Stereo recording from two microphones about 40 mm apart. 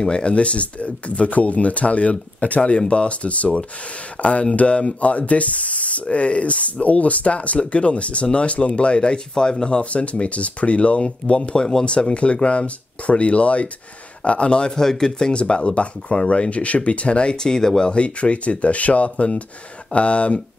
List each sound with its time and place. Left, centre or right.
0.0 s speech: left
2.7 s speech: left
14.8 s speech: centre; by 17.4 s left
17.4 s speech: centre; by 20.3 s left